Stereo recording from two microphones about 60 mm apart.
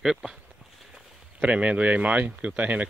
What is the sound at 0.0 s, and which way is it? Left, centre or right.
Speech, centre.